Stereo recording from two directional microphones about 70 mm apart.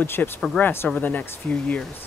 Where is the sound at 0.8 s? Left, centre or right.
Left.